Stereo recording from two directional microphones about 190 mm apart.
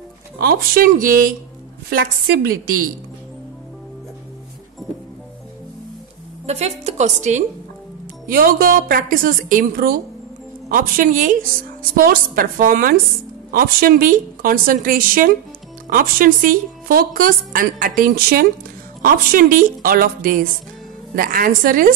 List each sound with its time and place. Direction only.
0.4 s a woman's voice: 50° right (ahead or behind)
6.4 s a woman's voice: 35° right (ahead or behind)
8.3 s a woman's voice: 50° right (ahead or behind)